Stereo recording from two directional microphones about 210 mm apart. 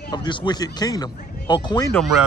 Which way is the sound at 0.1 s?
20° left (ahead or behind).